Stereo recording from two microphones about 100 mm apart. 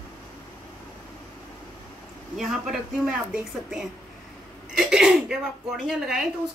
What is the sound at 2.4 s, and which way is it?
Speech, 5° right (ahead or behind).